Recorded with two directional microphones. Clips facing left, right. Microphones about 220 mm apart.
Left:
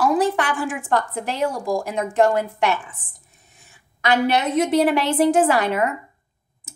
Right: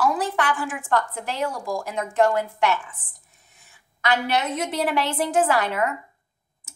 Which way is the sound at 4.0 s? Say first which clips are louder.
Left 4 dB; 15° left (ahead or behind).